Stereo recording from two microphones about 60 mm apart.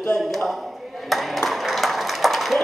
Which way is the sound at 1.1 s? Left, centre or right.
Centre.